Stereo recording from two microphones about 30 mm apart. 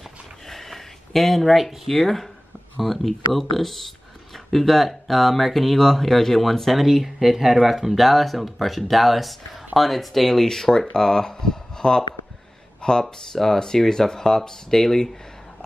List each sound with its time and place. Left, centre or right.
0.5 s speech: centre
6.9 s speech: centre; by 12.0 s left
13.0 s speech: centre